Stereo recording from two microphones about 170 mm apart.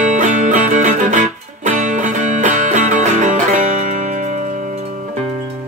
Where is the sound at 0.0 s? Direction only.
45° right (ahead or behind).